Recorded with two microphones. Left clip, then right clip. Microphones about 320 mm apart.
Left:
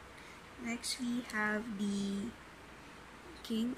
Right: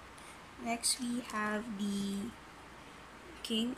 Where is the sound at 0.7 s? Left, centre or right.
Centre.